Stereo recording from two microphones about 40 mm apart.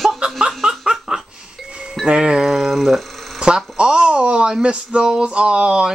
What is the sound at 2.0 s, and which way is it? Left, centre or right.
Speech, right.